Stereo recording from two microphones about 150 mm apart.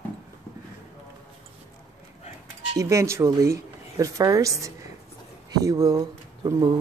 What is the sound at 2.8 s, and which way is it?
Speech, 20° right (ahead or behind).